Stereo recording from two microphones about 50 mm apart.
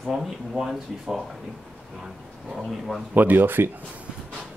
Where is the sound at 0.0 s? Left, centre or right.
Centre.